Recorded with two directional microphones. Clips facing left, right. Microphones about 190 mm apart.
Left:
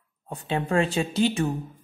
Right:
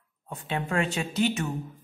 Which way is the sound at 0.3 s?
35° left (ahead or behind).